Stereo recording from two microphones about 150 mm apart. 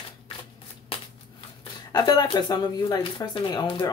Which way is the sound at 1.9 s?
30° left (ahead or behind).